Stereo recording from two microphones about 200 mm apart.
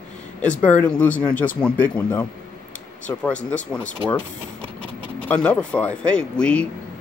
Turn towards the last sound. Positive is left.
turn(degrees=5)  # may be behind; listen again after turning